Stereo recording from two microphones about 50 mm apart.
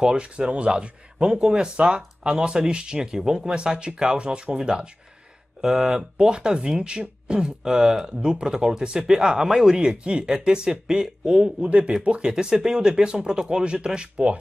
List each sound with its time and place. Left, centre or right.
0.0 s speech: centre